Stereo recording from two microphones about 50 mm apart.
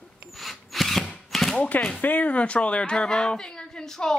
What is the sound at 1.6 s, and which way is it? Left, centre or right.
Speech, left.